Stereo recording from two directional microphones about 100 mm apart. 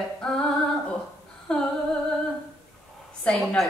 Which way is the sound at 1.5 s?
10° left (ahead or behind).